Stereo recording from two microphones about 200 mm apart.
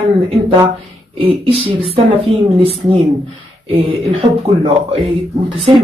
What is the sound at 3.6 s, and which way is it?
Speech, 30° right (ahead or behind).